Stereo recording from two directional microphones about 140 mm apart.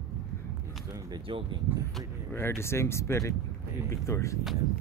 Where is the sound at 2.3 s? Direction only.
15° left (ahead or behind).